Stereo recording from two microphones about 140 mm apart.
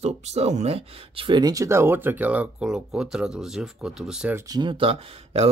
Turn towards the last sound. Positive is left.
turn(degrees=-40)  # may be behind; listen again after turning